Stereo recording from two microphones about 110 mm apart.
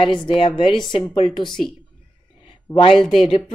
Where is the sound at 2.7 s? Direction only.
50° left (ahead or behind).